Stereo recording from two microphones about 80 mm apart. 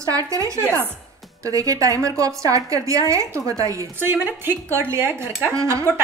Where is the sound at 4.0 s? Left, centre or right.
Right.